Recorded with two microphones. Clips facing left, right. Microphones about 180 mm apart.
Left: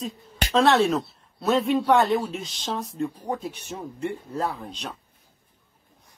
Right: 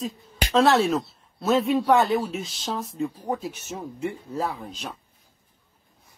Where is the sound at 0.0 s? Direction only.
Centre (ahead or behind).